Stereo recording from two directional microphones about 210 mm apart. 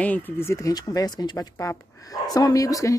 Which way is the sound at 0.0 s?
10° left (ahead or behind).